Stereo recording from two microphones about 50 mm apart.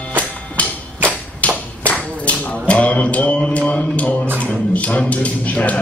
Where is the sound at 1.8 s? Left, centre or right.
Left.